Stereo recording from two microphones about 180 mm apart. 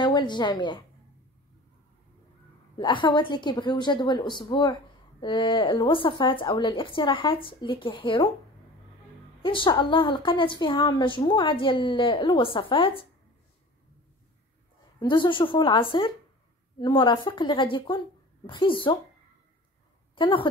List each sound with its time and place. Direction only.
0.0 s a woman's voice: 25° left (ahead or behind)
2.8 s a woman's voice: 25° left (ahead or behind)
9.4 s a woman's voice: 30° left (ahead or behind)
15.0 s a woman's voice: 25° left (ahead or behind)
20.2 s a woman's voice: 30° left (ahead or behind)